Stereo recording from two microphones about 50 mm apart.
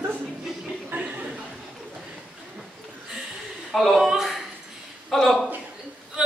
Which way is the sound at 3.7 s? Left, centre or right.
Centre.